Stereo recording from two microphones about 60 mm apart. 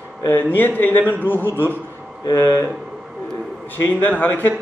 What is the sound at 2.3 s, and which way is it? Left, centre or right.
Speech, left.